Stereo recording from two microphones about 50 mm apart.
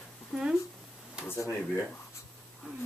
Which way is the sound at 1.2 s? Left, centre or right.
Left.